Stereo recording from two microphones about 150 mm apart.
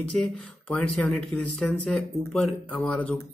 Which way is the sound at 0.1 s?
10° left (ahead or behind).